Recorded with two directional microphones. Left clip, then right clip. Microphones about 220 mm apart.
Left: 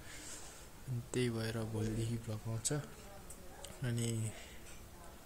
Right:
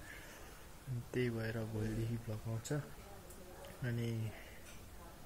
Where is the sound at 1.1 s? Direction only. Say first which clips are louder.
Left 1 dB; 15° left (ahead or behind).